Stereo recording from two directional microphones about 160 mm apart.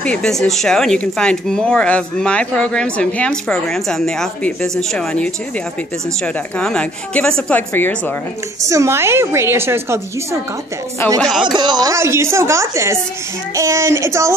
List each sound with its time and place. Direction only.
0.0 s a woman's voice: 5° left (ahead or behind)
8.6 s a woman's voice: 20° right (ahead or behind)
11.1 s speech: 5° left (ahead or behind)
11.4 s a woman's voice: 25° right (ahead or behind)